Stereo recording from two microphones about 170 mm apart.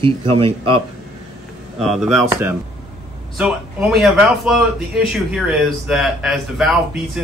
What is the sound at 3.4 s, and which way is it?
Speech, centre (ahead or behind).